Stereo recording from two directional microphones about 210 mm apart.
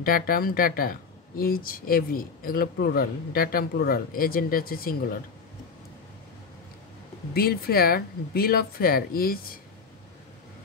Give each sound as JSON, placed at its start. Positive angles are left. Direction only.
{"t": 0.0, "sound": "speech", "side_deg": 45}
{"t": 7.3, "sound": "speech", "side_deg": 45}